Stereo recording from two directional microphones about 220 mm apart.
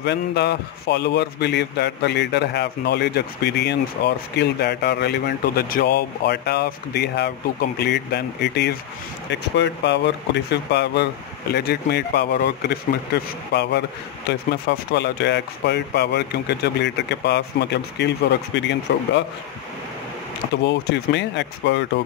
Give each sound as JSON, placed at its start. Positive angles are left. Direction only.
{"t": 0.0, "sound": "a man's voice", "side_deg": 50}
{"t": 20.6, "sound": "a man's voice", "side_deg": 50}